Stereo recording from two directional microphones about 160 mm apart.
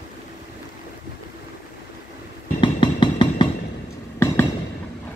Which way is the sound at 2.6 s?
30° left (ahead or behind).